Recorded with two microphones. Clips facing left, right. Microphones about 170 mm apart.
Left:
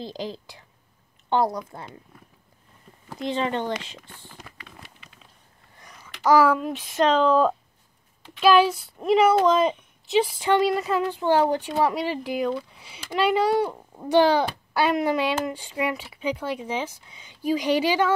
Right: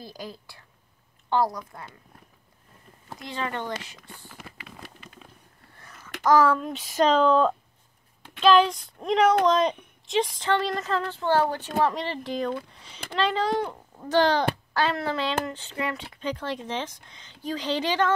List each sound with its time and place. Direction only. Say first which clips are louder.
0.0 s speech: left 6 dB; 20° left (ahead or behind)
3.2 s speech: left 6 dB; 25° left (ahead or behind)
5.8 s a sound: left 1 dB; 15° left (ahead or behind)
6.2 s speech: left 2 dB; 10° left (ahead or behind)